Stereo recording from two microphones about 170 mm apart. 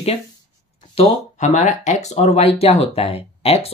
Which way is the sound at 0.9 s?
40° left (ahead or behind).